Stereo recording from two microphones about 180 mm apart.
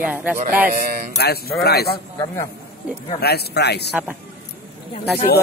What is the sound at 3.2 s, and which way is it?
Speech, 60° left (ahead or behind).